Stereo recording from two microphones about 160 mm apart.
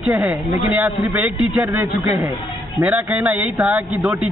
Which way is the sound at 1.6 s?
15° right (ahead or behind).